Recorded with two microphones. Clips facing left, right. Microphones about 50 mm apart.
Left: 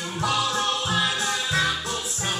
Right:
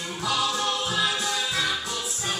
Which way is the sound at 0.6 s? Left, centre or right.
Left.